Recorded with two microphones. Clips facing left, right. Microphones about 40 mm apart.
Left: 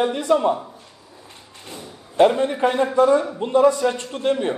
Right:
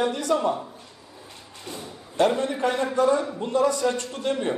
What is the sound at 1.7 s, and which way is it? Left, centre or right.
A man's voice, left.